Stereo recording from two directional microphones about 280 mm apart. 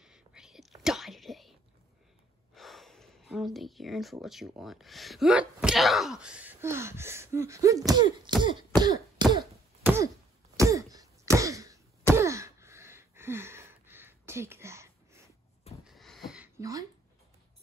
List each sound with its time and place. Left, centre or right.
0.0 s whispering: centre
2.5 s speech: centre
10.5 s cough: centre
12.1 s a sound: centre